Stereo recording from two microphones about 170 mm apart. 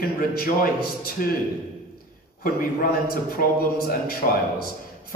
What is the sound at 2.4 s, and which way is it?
A man's voice, 60° left (ahead or behind).